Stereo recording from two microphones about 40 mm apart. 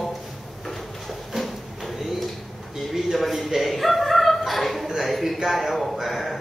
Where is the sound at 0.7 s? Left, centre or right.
Centre.